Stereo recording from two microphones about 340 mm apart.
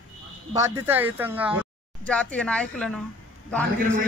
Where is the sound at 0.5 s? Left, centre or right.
Centre.